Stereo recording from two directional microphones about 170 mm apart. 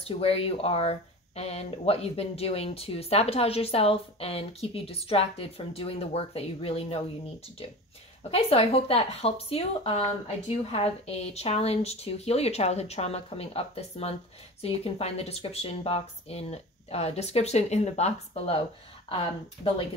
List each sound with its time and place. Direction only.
0.1 s speech: 35° left (ahead or behind)
8.2 s speech: 35° left (ahead or behind)